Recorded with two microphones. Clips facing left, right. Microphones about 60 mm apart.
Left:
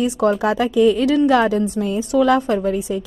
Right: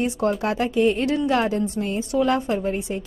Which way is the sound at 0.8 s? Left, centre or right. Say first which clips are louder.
Left 7 dB; left.